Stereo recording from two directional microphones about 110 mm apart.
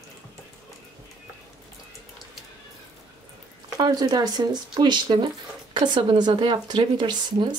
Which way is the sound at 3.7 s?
35° right (ahead or behind).